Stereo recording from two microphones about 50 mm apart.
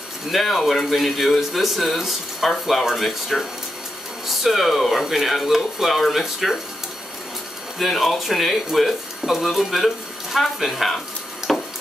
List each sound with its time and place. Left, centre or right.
0.3 s speech: centre
7.8 s speech: centre
11.4 s a sound: centre